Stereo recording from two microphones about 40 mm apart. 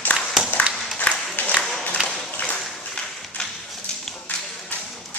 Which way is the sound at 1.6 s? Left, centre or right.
Centre.